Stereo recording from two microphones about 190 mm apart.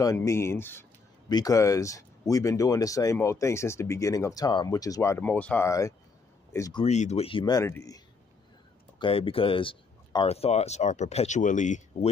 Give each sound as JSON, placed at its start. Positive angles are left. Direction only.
{"t": 0.0, "sound": "speech", "side_deg": 15}
{"t": 6.8, "sound": "speech", "side_deg": 35}
{"t": 9.0, "sound": "speech", "side_deg": 30}